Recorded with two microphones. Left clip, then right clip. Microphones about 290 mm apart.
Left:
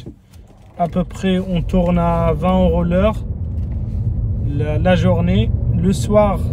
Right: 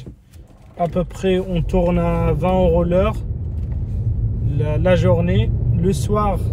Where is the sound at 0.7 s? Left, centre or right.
Centre.